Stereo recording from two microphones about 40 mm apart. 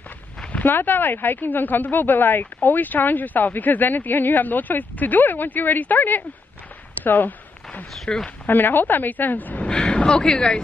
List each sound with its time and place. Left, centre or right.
0.7 s a woman's voice: left
7.1 s a sound: left
8.1 s speech: left
8.5 s a woman's voice: left
9.7 s speech: left